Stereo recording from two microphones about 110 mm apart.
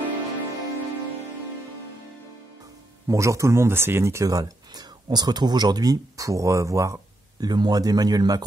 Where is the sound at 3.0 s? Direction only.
30° right (ahead or behind).